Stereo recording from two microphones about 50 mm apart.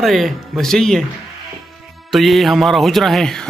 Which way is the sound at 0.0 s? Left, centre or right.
Centre.